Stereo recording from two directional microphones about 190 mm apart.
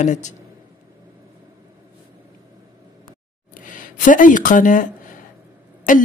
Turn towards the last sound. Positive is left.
turn(degrees=45)  # may be behind; listen again after turning